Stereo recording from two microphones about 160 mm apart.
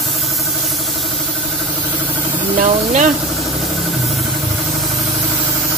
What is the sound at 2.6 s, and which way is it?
Speech, 50° right (ahead or behind).